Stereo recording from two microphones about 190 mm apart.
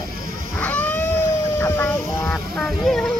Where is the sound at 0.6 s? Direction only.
10° left (ahead or behind).